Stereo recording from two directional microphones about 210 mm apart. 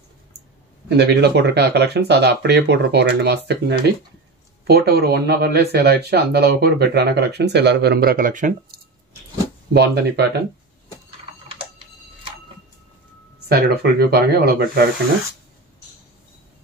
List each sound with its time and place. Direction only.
0.8 s speech: 50° right (ahead or behind)
9.8 s speech: 50° right (ahead or behind)
13.5 s speech: 50° right (ahead or behind)